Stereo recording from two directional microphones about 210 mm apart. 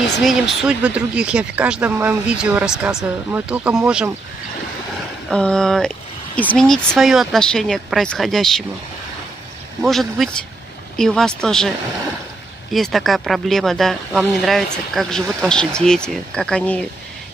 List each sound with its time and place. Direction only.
0.2 s speech: centre (ahead or behind)
5.3 s speech: 5° left (ahead or behind)
9.8 s speech: centre (ahead or behind)
12.7 s speech: centre (ahead or behind)